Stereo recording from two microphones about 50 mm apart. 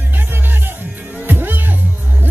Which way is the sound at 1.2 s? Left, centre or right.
Right.